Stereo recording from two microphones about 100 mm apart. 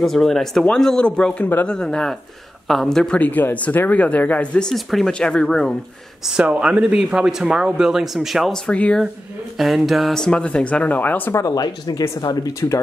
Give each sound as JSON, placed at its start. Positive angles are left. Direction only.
{"t": 0.0, "sound": "speech", "side_deg": 5}
{"t": 6.2, "sound": "speech", "side_deg": -10}
{"t": 8.6, "sound": "speech", "side_deg": 15}
{"t": 9.6, "sound": "speech", "side_deg": 0}
{"t": 11.4, "sound": "speech", "side_deg": 40}
{"t": 12.5, "sound": "speech", "side_deg": 30}